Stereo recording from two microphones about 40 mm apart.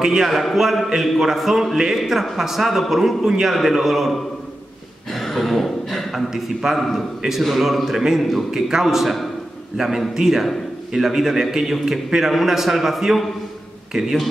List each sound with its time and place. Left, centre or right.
0.0 s a man's voice: centre
0.3 s a man's voice: centre
5.1 s a sound: centre
6.3 s a man's voice: centre
8.5 s a man's voice: centre
9.8 s a man's voice: centre
13.9 s a man's voice: centre